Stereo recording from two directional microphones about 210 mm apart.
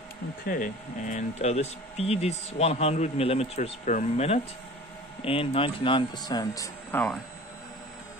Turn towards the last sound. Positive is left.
turn(degrees=10)  # may be behind; listen again after turning